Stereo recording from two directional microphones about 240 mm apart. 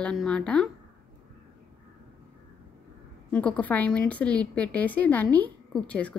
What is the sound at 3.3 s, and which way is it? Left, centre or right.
A woman's voice, centre.